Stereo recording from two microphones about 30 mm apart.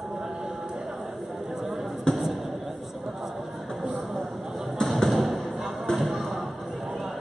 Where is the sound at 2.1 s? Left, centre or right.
Left.